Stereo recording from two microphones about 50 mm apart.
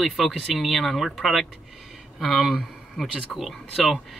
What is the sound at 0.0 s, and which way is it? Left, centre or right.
Speech, centre.